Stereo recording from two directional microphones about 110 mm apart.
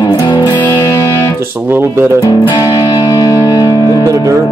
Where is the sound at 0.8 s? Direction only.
30° left (ahead or behind).